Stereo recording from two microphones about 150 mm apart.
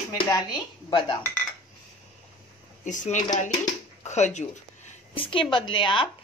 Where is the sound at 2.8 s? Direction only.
55° left (ahead or behind).